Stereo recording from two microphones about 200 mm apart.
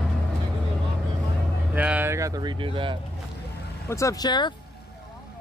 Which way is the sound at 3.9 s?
15° left (ahead or behind).